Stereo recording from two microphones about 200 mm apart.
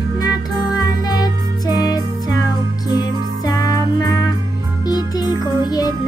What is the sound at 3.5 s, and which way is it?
Music, 20° left (ahead or behind).